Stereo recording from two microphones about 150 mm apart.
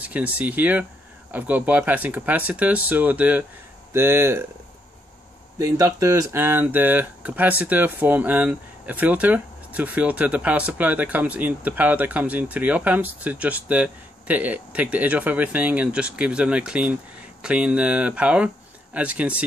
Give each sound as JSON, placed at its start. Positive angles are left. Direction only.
{"t": 0.0, "sound": "speech", "side_deg": -10}
{"t": 5.6, "sound": "speech", "side_deg": -20}